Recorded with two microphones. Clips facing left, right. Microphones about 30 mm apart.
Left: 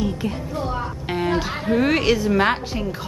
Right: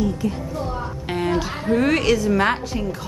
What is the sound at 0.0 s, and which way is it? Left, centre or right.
Speech, left.